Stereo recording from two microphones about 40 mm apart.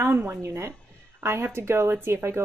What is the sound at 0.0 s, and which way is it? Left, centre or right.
Speech, right.